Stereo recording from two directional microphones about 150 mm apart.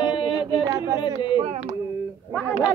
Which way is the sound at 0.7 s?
25° right (ahead or behind).